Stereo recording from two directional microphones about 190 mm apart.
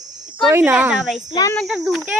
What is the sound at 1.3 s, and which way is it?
Speech, 20° left (ahead or behind).